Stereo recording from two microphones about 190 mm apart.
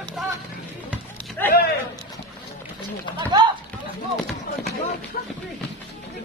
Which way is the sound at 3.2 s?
25° right (ahead or behind).